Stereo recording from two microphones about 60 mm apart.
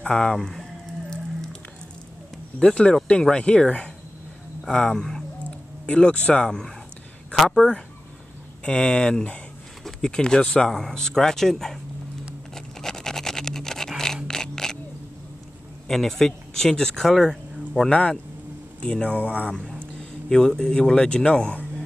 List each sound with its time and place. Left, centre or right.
0.1 s speech: centre
1.1 s music: centre
2.6 s speech: centre
12.5 s scratch: centre
15.9 s speech: centre; by 19.5 s left
19.5 s speech: centre